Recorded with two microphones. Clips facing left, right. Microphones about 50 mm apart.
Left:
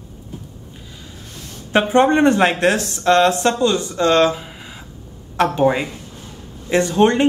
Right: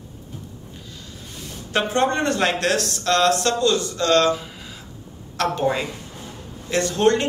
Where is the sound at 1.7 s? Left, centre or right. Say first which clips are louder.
Left 6 dB; left.